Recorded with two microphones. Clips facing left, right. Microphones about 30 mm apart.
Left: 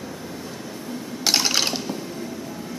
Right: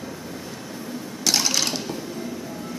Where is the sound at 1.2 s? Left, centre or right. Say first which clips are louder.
Left 1 dB; centre.